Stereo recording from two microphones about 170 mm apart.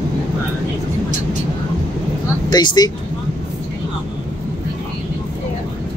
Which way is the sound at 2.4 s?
25° left (ahead or behind).